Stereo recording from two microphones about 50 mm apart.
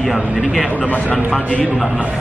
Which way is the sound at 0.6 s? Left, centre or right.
Left.